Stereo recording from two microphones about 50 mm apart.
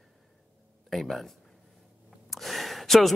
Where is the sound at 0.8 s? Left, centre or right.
Centre.